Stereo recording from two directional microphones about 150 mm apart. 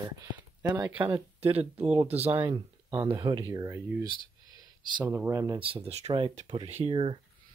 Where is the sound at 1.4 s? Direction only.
40° right (ahead or behind).